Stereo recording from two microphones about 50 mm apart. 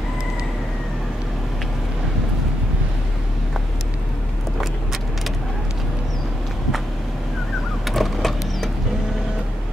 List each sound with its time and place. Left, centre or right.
7.8 s power windows: centre